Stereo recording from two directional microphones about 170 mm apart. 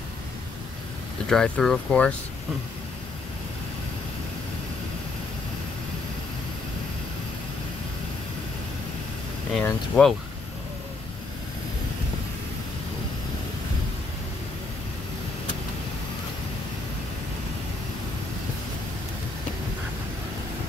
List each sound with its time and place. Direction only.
1.3 s speech: centre (ahead or behind)
9.6 s speech: 5° left (ahead or behind)